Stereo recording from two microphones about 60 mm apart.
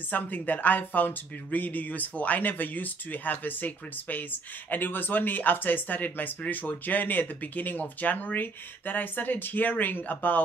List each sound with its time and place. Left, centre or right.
0.1 s speech: left